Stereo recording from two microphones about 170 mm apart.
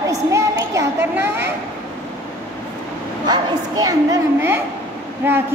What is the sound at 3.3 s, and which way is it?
A woman's voice, 20° right (ahead or behind).